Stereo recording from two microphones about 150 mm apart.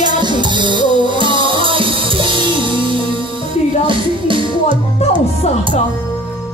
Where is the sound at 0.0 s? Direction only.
30° right (ahead or behind).